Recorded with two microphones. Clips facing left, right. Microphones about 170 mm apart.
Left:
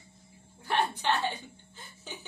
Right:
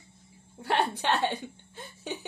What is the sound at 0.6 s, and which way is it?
Chuckle, 60° right (ahead or behind).